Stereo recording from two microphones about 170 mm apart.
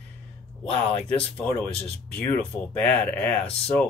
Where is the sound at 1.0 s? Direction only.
5° left (ahead or behind).